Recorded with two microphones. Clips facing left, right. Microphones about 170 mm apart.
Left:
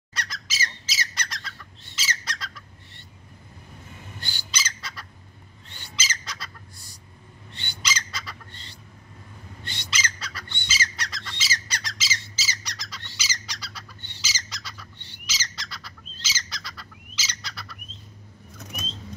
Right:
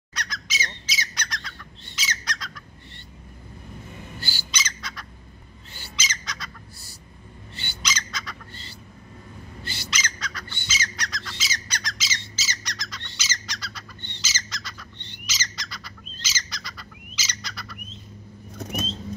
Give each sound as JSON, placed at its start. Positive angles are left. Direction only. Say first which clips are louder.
{"t": 0.1, "sound": "squawk", "louder": "right 2 dB", "side_deg": 5}
{"t": 4.2, "sound": "bird", "louder": "right 4 dB", "side_deg": -5}
{"t": 4.6, "sound": "squawk", "louder": "even", "side_deg": 5}
{"t": 5.7, "sound": "bird", "louder": "even", "side_deg": -5}
{"t": 7.9, "sound": "squawk", "louder": "even", "side_deg": 5}
{"t": 9.6, "sound": "bird", "louder": "even", "side_deg": -5}
{"t": 10.7, "sound": "squawk", "louder": "even", "side_deg": 5}
{"t": 17.3, "sound": "bird", "louder": "right 4 dB", "side_deg": 5}
{"t": 18.6, "sound": "vehicle", "louder": "right 9 dB", "side_deg": -35}